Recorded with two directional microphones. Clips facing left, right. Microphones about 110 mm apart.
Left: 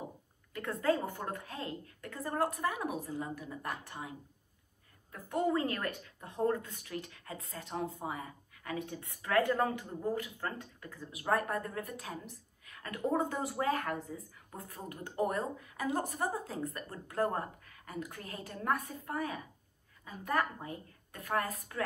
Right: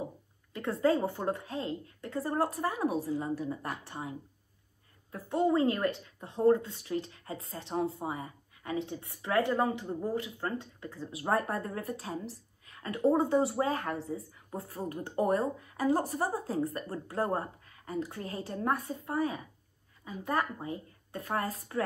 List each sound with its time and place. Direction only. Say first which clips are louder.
0.5 s a woman's voice: right 4 dB; 25° right (ahead or behind)
2.1 s a woman's voice: right 3 dB; 35° right (ahead or behind)
5.3 s a woman's voice: right 5 dB; 20° right (ahead or behind)
11.1 s a woman's voice: right 2 dB; 35° right (ahead or behind)
12.6 s a sound: right 6 dB; 30° right (ahead or behind)
12.9 s a woman's voice: right 7 dB; 20° right (ahead or behind)
14.9 s a woman's voice: right 5 dB; 35° right (ahead or behind)